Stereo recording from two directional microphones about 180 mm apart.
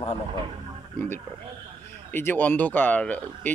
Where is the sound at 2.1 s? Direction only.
10° left (ahead or behind).